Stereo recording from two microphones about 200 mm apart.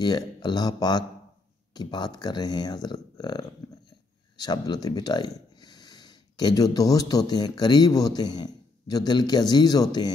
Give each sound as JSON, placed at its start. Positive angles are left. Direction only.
{"t": 0.0, "sound": "speech", "side_deg": 20}